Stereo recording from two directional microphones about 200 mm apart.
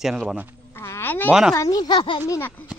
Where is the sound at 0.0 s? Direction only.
Centre (ahead or behind).